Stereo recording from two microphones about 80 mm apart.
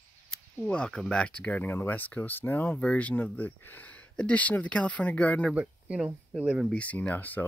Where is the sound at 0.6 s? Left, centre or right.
Centre.